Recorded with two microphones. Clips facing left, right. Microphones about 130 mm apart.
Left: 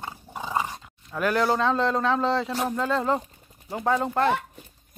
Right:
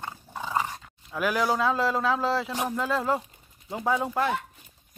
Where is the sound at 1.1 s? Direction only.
5° right (ahead or behind).